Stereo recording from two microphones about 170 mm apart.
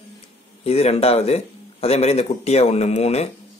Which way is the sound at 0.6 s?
35° left (ahead or behind).